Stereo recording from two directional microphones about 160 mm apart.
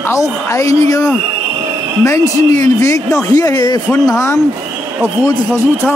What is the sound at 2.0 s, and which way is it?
A man's voice, 20° left (ahead or behind).